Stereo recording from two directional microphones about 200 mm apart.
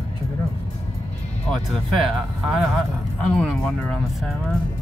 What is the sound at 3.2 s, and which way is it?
Speech, 5° left (ahead or behind).